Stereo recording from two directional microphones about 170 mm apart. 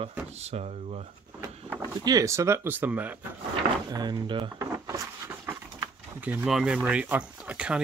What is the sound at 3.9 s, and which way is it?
Speech, 25° right (ahead or behind).